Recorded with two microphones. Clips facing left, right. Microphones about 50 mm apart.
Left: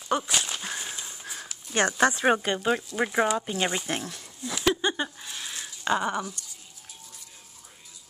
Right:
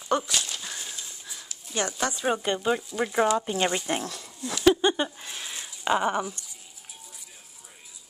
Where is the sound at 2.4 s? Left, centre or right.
Centre.